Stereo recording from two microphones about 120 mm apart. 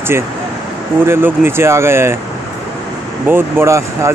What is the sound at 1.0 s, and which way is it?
Speech, 20° right (ahead or behind).